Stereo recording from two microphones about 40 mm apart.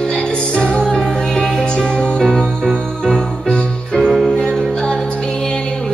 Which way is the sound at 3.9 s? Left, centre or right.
Centre.